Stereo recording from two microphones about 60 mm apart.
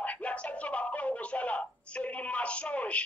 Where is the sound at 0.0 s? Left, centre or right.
Left.